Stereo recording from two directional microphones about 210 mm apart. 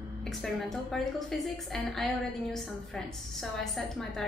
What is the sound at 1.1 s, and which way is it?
A woman's voice, centre (ahead or behind).